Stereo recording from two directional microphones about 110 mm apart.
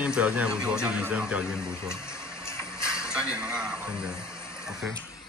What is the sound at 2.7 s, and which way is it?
Music, 25° left (ahead or behind).